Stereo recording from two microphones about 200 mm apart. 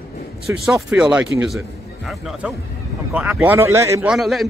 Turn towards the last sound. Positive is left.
turn(degrees=0)  # may be behind; listen again after turning